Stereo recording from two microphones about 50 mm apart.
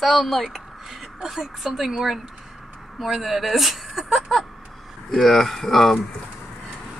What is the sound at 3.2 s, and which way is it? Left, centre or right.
A woman's voice, centre.